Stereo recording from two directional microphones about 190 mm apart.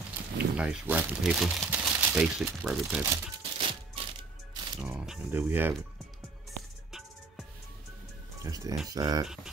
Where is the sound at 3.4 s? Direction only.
25° right (ahead or behind).